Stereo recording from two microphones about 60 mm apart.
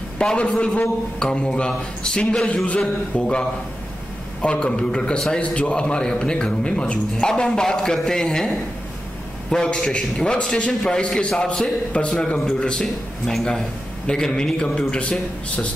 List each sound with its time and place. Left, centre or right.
0.2 s a man's voice: centre
13.3 s a man's voice: centre; by 15.7 s left